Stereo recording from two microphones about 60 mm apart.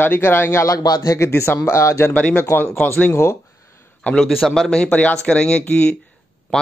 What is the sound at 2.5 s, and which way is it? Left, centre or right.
Speech, left.